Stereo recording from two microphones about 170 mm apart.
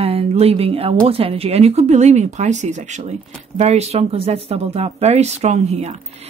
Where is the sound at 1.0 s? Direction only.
35° right (ahead or behind).